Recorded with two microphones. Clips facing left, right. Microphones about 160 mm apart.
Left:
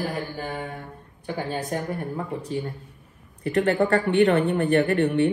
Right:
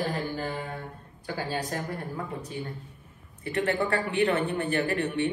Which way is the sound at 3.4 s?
40° left (ahead or behind).